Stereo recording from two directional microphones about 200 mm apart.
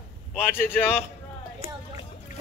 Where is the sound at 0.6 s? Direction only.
10° left (ahead or behind).